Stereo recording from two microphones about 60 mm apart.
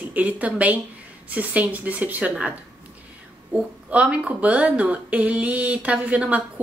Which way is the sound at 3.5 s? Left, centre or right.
Right.